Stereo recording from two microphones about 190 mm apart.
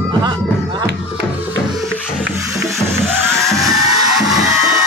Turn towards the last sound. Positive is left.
turn(degrees=0)  # may be behind; listen again after turning